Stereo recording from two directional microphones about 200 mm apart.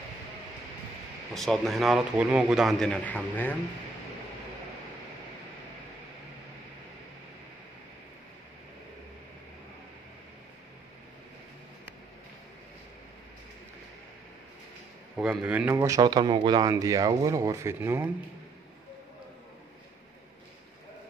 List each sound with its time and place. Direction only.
1.3 s a man's voice: centre (ahead or behind)
15.1 s speech: 5° right (ahead or behind)